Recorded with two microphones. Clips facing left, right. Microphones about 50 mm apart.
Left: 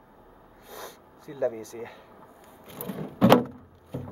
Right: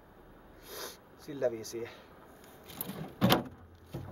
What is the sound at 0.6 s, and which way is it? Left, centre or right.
Sniff, centre.